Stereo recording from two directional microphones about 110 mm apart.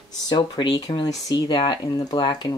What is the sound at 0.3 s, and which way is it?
Speech, 40° left (ahead or behind).